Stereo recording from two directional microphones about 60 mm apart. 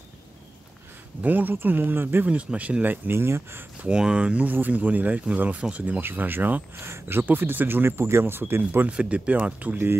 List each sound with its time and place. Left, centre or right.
1.2 s speech: right
2.2 s speech: right
3.1 s speech: right
3.8 s speech: centre; by 8.8 s right
8.8 s speech: right